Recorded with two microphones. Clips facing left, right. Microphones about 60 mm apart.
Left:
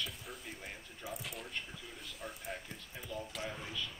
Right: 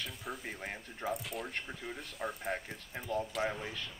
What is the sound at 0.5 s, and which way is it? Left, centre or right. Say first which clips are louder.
Speech: right 5 dB; right.